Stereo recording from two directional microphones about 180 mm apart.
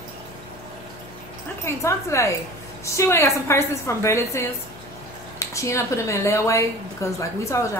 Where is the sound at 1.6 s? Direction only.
15° left (ahead or behind).